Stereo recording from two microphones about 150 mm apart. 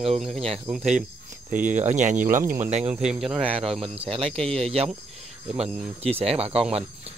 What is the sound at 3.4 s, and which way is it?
Speech, 40° right (ahead or behind).